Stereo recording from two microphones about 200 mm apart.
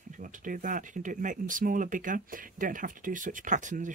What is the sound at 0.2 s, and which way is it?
Speech, 40° right (ahead or behind).